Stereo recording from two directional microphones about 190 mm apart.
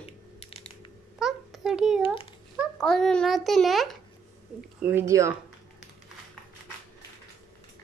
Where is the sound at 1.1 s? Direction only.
Centre (ahead or behind).